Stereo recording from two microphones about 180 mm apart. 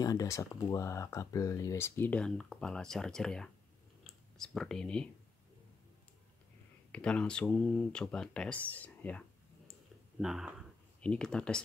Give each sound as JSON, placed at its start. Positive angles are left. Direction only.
{"t": 0.0, "sound": "speech", "side_deg": 20}
{"t": 4.0, "sound": "a sound", "side_deg": 0}
{"t": 6.9, "sound": "speech", "side_deg": 5}
{"t": 10.2, "sound": "speech", "side_deg": -5}